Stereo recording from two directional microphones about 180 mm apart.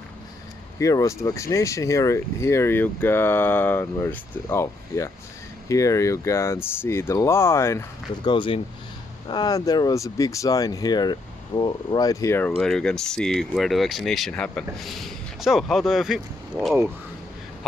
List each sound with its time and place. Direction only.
0.7 s speech: 15° left (ahead or behind); by 16.7 s centre (ahead or behind)